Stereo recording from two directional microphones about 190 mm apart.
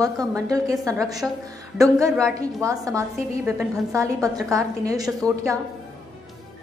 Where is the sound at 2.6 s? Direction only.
15° right (ahead or behind).